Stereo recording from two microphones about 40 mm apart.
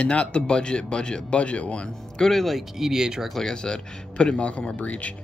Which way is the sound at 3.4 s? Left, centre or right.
Centre.